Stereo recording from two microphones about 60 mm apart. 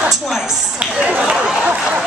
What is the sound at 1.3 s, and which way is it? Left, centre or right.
Chatter, centre.